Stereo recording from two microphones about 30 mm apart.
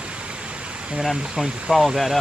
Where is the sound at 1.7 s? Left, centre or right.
Centre.